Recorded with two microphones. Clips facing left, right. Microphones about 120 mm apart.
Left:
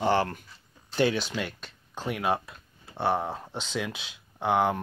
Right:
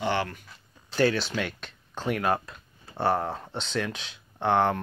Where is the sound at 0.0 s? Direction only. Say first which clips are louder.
Left 3 dB; 40° left (ahead or behind).